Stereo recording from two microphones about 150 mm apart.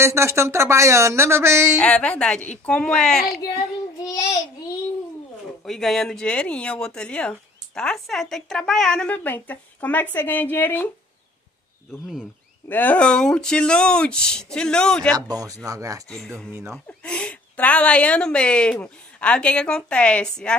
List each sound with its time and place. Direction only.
0.0 s speech: 20° right (ahead or behind)
1.8 s a woman's voice: 5° left (ahead or behind)
5.7 s speech: centre (ahead or behind)
12.6 s a woman's voice: 10° left (ahead or behind)
15.1 s speech: 25° right (ahead or behind)
16.1 s a woman's voice: 5° left (ahead or behind)